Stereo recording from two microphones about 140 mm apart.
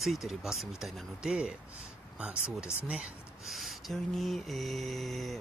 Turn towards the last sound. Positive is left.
turn(degrees=0)  # may be behind; listen again after turning